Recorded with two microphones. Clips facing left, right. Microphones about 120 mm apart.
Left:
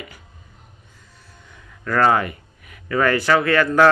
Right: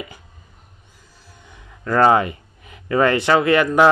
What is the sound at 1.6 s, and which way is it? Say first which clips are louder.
Speech: right 3 dB; 20° right (ahead or behind).